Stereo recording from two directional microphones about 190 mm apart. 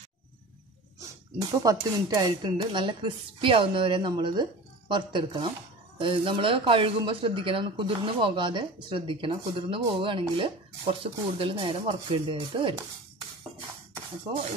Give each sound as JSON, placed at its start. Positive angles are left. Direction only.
{"t": 1.4, "sound": "speech", "side_deg": -20}